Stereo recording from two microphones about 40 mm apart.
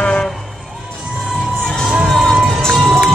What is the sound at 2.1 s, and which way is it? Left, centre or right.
Music, centre.